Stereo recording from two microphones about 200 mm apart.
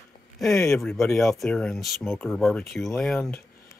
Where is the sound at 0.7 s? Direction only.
Centre (ahead or behind).